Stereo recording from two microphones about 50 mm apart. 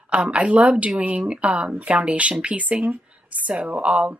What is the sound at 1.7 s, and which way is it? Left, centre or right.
Speech, right.